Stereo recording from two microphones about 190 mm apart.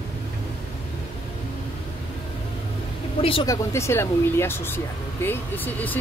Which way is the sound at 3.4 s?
15° left (ahead or behind).